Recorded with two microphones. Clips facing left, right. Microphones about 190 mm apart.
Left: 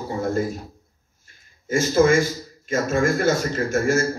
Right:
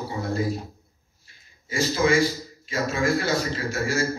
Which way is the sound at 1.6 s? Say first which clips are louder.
Left 5 dB; 50° left (ahead or behind).